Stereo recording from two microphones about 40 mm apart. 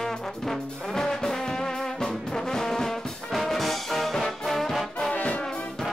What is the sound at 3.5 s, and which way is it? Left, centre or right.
Brass instrument, centre.